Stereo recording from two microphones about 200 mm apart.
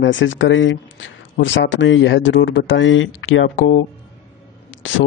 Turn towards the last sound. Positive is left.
turn(degrees=70)  # may be behind; listen again after turning